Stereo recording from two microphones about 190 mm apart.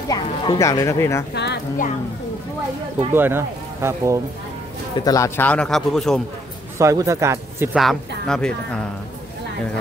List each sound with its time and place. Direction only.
0.1 s speech: 20° left (ahead or behind)
1.3 s speech: 60° left (ahead or behind)
3.1 s speech: 10° right (ahead or behind)
4.9 s speech: 20° left (ahead or behind); by 6.2 s centre (ahead or behind)
6.8 s speech: 15° right (ahead or behind)
7.7 s speech: centre (ahead or behind)